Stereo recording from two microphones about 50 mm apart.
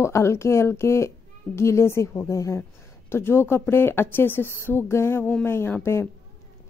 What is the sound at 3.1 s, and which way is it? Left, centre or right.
A woman's voice, left.